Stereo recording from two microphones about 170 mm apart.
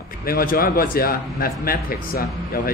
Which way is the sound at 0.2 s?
60° left (ahead or behind).